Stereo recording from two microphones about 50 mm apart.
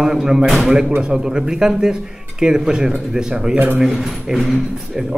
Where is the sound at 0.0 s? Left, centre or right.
Centre.